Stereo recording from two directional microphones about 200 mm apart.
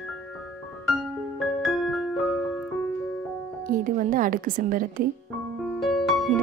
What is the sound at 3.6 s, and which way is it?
Music, 45° right (ahead or behind).